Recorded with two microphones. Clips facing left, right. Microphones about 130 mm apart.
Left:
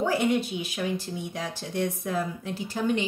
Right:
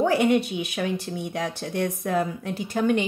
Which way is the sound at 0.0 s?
60° right (ahead or behind).